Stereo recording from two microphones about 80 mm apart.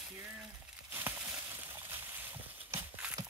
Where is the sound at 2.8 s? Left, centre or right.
Right.